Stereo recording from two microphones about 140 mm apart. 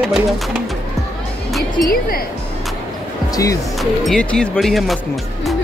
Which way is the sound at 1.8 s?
90° left.